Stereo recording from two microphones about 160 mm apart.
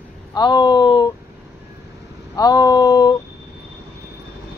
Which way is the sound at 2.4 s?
25° left (ahead or behind).